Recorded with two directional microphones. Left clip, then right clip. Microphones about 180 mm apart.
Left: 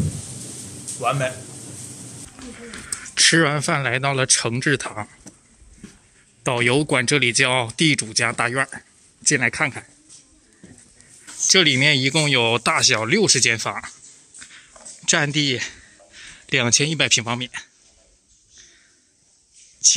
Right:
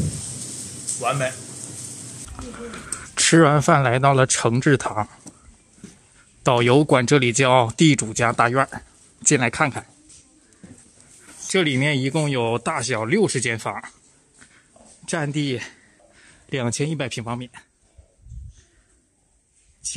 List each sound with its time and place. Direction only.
1.0 s speech: centre (ahead or behind)
3.0 s speech: 15° right (ahead or behind)
6.4 s speech: 15° right (ahead or behind)
11.4 s speech: 5° right (ahead or behind)
15.0 s speech: 5° right (ahead or behind)